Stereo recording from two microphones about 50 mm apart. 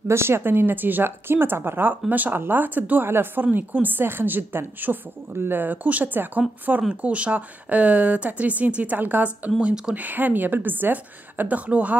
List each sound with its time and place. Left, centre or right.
0.1 s speech: right
3.1 s a woman's voice: right
9.6 s speech: centre
9.9 s a woman's voice: right